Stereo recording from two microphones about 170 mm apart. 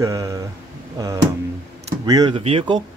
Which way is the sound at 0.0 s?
20° right (ahead or behind).